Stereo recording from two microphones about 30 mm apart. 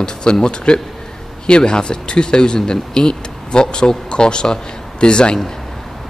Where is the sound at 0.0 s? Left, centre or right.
Left.